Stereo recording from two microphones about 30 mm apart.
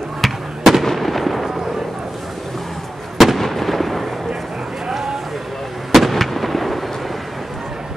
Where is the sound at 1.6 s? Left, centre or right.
Centre.